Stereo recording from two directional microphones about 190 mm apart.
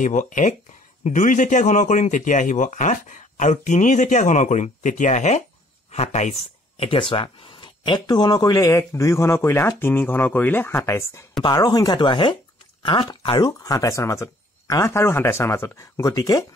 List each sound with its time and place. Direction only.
0.0 s speech: 40° left (ahead or behind); by 16.4 s 20° left (ahead or behind)